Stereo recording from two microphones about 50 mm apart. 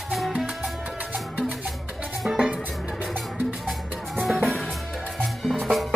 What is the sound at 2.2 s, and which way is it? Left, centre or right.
Music, centre.